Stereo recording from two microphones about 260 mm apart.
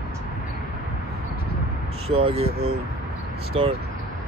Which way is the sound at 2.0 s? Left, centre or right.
Right.